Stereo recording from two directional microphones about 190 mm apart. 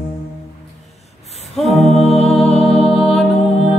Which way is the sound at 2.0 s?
35° left (ahead or behind).